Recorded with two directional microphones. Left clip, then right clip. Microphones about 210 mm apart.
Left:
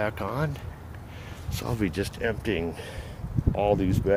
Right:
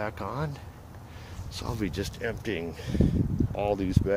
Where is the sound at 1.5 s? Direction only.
10° left (ahead or behind).